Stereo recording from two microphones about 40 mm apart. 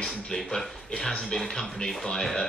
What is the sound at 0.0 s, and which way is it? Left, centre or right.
Speech, centre.